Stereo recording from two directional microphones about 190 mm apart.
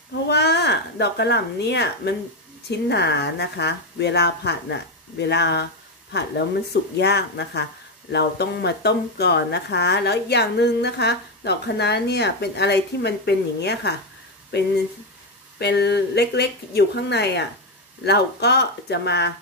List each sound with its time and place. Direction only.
0.3 s speech: 60° left (ahead or behind)
15.6 s speech: 60° left (ahead or behind)